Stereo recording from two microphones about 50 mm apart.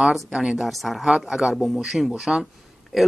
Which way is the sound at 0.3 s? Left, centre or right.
Centre.